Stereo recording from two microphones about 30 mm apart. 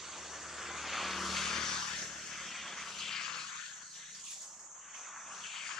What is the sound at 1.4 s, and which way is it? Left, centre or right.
Vehicle, centre.